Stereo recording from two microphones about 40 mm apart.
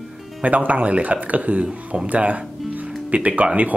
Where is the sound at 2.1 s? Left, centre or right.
Right.